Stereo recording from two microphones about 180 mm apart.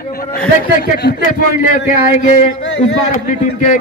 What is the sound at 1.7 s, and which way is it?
A man's voice, 50° left (ahead or behind).